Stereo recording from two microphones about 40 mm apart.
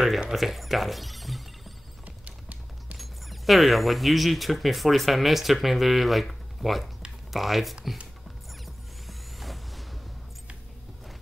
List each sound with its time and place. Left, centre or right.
0.3 s speech: centre
2.0 s music: right
3.0 s speech: centre
9.0 s vehicle: centre